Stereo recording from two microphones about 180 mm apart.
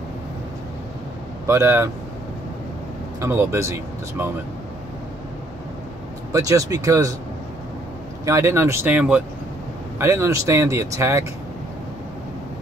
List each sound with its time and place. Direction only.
1.5 s speech: 15° right (ahead or behind)
3.2 s speech: 15° right (ahead or behind)
6.3 s speech: 20° right (ahead or behind)
8.3 s speech: 15° right (ahead or behind)